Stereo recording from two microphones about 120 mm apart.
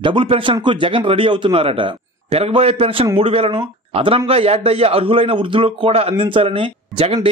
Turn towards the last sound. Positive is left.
turn(degrees=-50)  # may be behind; listen again after turning